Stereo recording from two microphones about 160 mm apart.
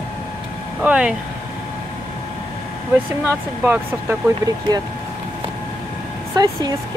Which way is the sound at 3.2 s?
10° right (ahead or behind).